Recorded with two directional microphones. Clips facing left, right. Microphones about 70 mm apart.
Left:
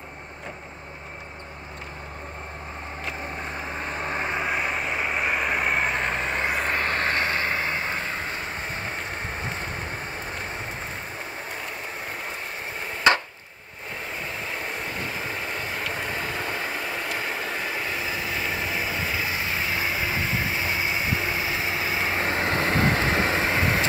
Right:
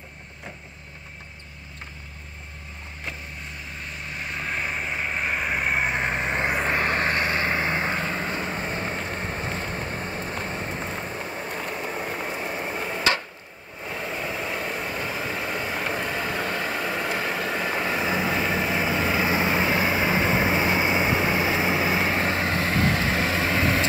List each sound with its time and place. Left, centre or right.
3.8 s vehicle: left
4.4 s vehicle: centre
7.9 s vehicle: centre
12.0 s a sound: centre
14.2 s vehicle: centre
18.0 s vehicle: right
19.2 s vehicle: right
20.8 s vehicle: centre
22.5 s vehicle: left